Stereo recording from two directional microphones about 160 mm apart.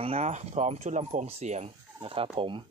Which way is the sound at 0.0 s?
40° right (ahead or behind).